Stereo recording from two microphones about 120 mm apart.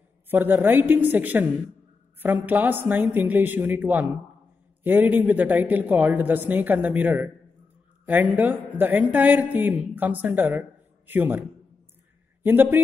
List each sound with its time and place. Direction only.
0.3 s speech: 15° right (ahead or behind)
12.4 s speech: 15° right (ahead or behind)